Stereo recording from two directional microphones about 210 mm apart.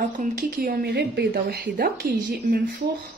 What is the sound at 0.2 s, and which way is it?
A woman's voice, 40° right (ahead or behind).